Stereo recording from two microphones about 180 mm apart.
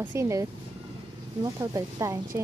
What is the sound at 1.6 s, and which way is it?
Speech, 15° right (ahead or behind).